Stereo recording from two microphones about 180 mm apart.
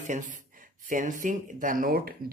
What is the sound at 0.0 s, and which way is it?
Speech, 45° right (ahead or behind).